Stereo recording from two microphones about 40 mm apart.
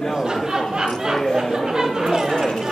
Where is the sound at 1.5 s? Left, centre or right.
Centre.